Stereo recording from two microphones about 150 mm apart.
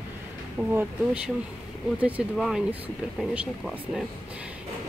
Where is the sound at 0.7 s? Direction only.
10° right (ahead or behind).